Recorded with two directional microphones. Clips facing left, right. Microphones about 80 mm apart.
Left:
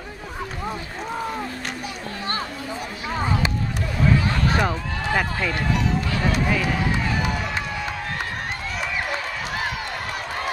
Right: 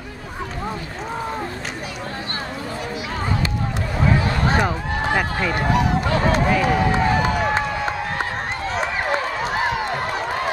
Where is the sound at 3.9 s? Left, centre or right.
Right.